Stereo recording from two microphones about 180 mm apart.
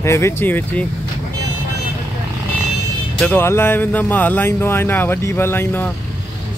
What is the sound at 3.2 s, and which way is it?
Speech, 10° left (ahead or behind).